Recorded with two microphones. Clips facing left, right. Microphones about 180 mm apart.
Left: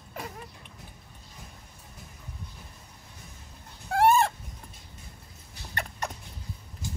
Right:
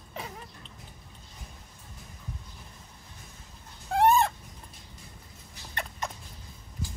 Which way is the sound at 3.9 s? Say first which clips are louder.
Left 1 dB; centre (ahead or behind).